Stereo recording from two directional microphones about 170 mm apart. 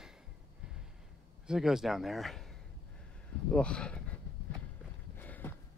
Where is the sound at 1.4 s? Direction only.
5° right (ahead or behind).